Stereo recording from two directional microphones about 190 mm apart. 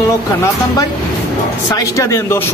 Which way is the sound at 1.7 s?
15° left (ahead or behind).